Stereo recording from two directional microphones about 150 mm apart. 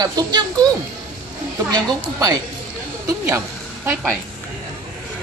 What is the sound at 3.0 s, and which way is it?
Speech, 20° right (ahead or behind).